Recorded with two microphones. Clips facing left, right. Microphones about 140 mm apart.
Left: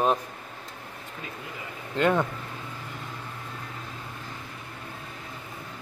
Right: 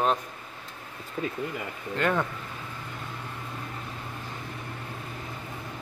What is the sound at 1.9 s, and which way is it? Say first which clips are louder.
Speech: left 3 dB; 20° left (ahead or behind).